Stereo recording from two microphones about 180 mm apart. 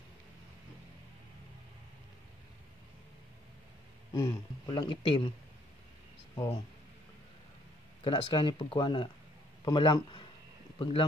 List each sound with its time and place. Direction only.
4.1 s speech: 20° left (ahead or behind)
6.3 s speech: 25° left (ahead or behind)
8.0 s speech: 25° left (ahead or behind)